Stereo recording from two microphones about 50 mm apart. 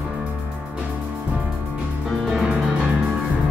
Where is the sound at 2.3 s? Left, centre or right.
Centre.